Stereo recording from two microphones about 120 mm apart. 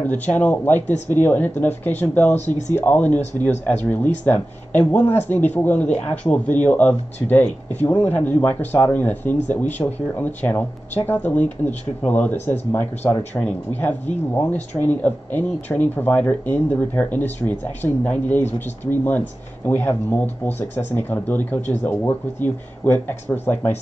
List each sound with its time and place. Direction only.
0.0 s speech: 15° left (ahead or behind)